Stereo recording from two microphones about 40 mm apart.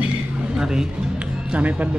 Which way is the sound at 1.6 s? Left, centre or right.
Right.